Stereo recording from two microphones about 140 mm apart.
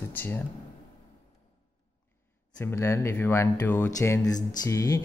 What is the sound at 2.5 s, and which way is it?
Speech, 20° left (ahead or behind).